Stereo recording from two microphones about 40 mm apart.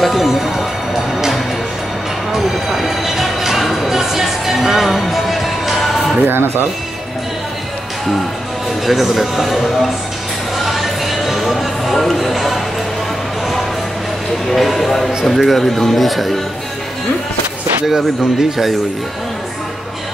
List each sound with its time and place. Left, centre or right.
0.0 s speech: centre
2.3 s music: centre
6.2 s speech: right
8.8 s speech: centre
10.6 s music: centre
14.5 s speech: centre
17.8 s speech: centre